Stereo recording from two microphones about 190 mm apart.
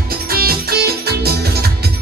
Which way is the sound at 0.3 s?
55° right (ahead or behind).